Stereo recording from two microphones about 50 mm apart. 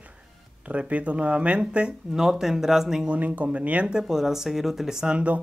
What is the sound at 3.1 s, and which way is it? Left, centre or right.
Speech, right.